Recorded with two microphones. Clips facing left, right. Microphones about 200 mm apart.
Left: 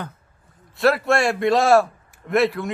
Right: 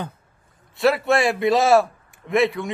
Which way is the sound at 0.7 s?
Centre (ahead or behind).